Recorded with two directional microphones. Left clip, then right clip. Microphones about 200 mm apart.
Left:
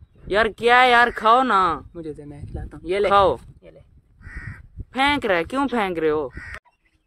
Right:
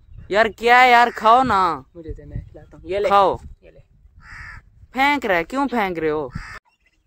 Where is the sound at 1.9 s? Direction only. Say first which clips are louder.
Left 3 dB; 45° left (ahead or behind).